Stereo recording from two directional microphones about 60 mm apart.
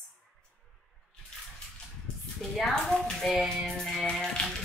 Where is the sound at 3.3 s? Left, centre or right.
Centre.